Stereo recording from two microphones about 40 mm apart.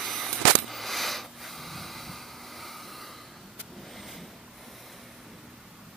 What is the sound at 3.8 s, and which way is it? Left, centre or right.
Vehicle, centre.